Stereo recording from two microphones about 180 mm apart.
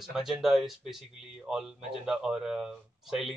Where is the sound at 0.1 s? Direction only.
Centre (ahead or behind).